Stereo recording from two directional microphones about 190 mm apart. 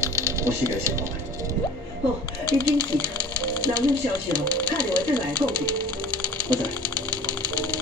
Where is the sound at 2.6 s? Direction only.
20° right (ahead or behind).